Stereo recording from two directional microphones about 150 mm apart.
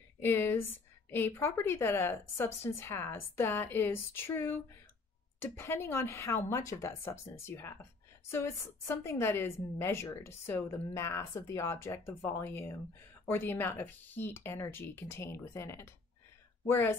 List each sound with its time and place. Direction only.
0.2 s speech: 15° left (ahead or behind)